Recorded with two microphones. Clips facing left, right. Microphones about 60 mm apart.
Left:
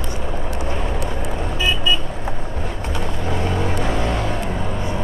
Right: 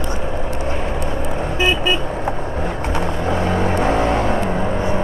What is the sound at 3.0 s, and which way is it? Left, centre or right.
Vehicle, right.